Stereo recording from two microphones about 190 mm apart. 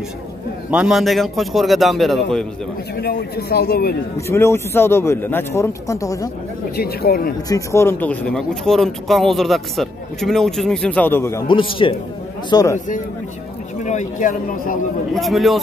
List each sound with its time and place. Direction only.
0.7 s speech: 5° right (ahead or behind)
3.0 s a man's voice: 55° left (ahead or behind)
4.3 s a man's voice: 10° left (ahead or behind)
6.8 s a man's voice: 55° left (ahead or behind)
7.4 s speech: 15° left (ahead or behind)
11.4 s a man's voice: 25° left (ahead or behind)
12.7 s a man's voice: 45° left (ahead or behind)
15.1 s speech: centre (ahead or behind)